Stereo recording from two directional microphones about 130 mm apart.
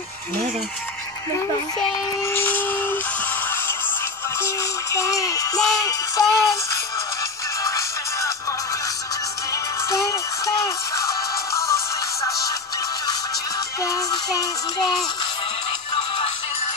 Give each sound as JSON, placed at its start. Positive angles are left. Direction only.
{"t": 2.2, "sound": "a sound", "side_deg": 15}
{"t": 4.9, "sound": "music", "side_deg": 25}
{"t": 7.6, "sound": "music", "side_deg": 25}
{"t": 9.5, "sound": "music", "side_deg": 25}
{"t": 13.8, "sound": "music", "side_deg": 25}